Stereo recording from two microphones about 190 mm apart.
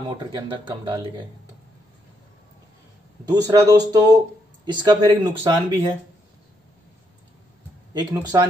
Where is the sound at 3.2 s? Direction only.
20° right (ahead or behind).